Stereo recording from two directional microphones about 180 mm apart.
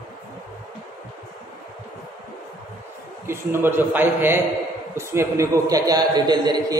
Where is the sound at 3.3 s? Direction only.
10° right (ahead or behind).